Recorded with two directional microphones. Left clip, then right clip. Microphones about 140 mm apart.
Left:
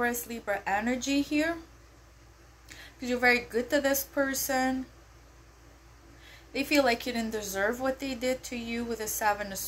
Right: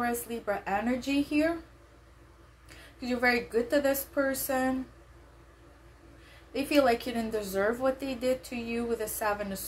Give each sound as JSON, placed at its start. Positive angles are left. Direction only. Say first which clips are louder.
{"t": 0.0, "sound": "speech", "louder": "left 1 dB", "side_deg": -15}
{"t": 3.0, "sound": "speech", "louder": "left 2 dB", "side_deg": -20}
{"t": 6.5, "sound": "speech", "louder": "right 1 dB", "side_deg": -15}